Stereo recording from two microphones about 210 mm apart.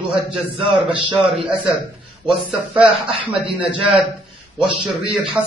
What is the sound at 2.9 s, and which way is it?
Speech, 25° right (ahead or behind).